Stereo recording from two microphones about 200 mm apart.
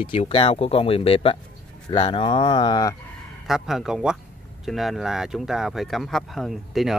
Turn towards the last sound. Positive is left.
turn(degrees=0)  # may be behind; listen again after turning